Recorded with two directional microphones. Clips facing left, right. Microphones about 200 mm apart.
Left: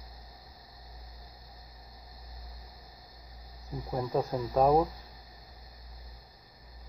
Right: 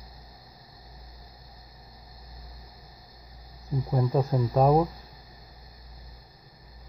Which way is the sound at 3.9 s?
Centre (ahead or behind).